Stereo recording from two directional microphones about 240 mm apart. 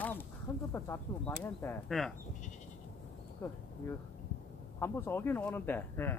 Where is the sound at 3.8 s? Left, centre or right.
Centre.